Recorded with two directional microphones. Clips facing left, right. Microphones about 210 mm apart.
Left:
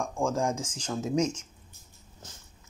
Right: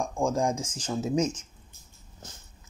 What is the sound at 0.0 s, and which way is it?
Speech, 10° right (ahead or behind).